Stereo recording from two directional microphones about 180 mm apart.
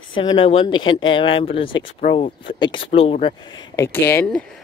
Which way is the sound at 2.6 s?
30° left (ahead or behind).